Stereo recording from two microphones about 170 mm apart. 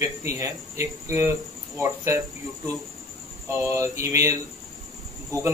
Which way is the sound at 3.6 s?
15° right (ahead or behind).